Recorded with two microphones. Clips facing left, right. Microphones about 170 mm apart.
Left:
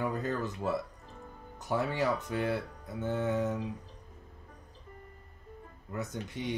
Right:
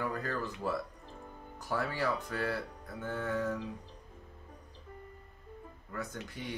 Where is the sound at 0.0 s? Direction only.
20° left (ahead or behind).